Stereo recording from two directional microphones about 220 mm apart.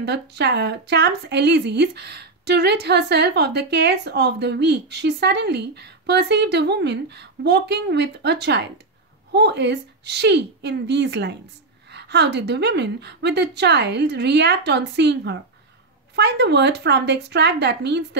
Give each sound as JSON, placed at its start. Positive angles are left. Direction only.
{"t": 0.0, "sound": "a woman's voice", "side_deg": -50}